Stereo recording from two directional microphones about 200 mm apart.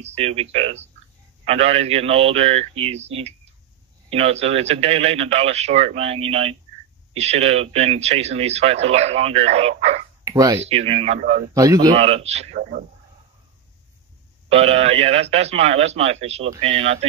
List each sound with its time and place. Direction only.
0.0 s speech: 30° right (ahead or behind)
10.2 s speech: 15° right (ahead or behind)
10.6 s speech: 30° right (ahead or behind)
11.1 s a man's voice: 45° right (ahead or behind)
11.5 s a man's voice: 15° right (ahead or behind)
12.0 s speech: 30° right (ahead or behind)
12.5 s a man's voice: 50° right (ahead or behind)
14.5 s speech: 30° right (ahead or behind)